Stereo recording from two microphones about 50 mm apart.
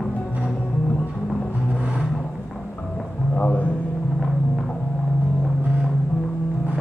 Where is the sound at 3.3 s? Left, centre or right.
Left.